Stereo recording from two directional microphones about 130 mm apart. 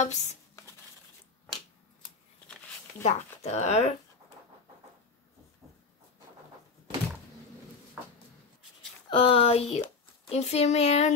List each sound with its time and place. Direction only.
0.0 s speech: 60° left (ahead or behind)
3.0 s speech: 60° left (ahead or behind)
9.1 s speech: 45° left (ahead or behind)